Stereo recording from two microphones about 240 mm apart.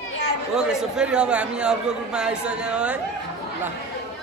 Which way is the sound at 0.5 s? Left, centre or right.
Centre.